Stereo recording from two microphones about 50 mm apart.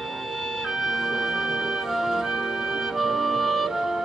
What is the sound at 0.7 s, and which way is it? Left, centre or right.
Music, centre.